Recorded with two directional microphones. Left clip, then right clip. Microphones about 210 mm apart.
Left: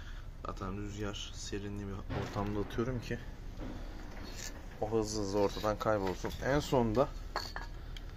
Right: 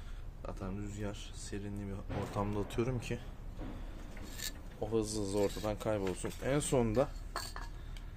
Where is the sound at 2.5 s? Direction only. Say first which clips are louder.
Even; 25° right (ahead or behind).